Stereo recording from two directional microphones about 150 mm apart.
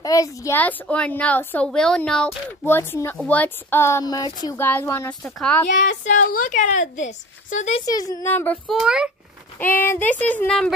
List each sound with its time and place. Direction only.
0.0 s a woman's voice: 20° left (ahead or behind); by 2.3 s 5° left (ahead or behind)
2.6 s a woman's voice: 15° left (ahead or behind)
4.6 s a woman's voice: 15° left (ahead or behind)
6.0 s a woman's voice: 60° left (ahead or behind)
7.8 s speech: 25° left (ahead or behind)
8.3 s a woman's voice: 15° left (ahead or behind)
8.6 s a child's voice: centre (ahead or behind)
9.6 s a woman's voice: 15° left (ahead or behind)